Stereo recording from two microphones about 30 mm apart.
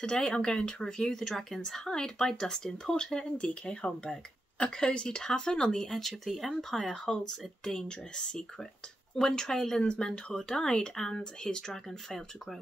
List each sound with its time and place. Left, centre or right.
0.2 s speech: left
1.0 s speech: centre; by 5.9 s left
5.9 s speech: centre
6.7 s speech: centre
8.2 s speech: left
9.8 s speech: left
11.0 s speech: centre